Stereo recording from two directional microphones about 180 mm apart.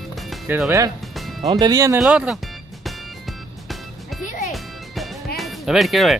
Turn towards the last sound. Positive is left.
turn(degrees=0)  # may be behind; listen again after turning